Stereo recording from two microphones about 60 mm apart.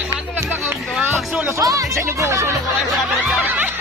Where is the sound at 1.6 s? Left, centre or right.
Right.